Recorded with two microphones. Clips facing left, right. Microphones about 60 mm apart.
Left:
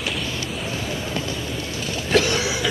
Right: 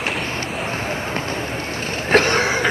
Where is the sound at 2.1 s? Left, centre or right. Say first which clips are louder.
Right 4 dB; right.